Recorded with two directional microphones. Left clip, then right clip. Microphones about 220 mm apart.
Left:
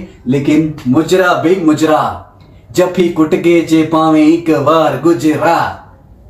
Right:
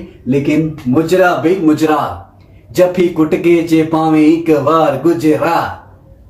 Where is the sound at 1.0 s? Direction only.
10° right (ahead or behind).